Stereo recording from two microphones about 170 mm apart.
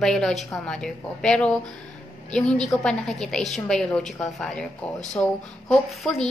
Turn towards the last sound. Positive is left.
turn(degrees=5)  # may be behind; listen again after turning